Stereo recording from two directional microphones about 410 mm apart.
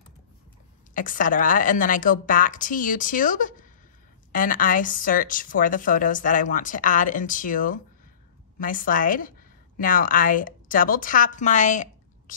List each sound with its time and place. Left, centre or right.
0.9 s a woman's voice: centre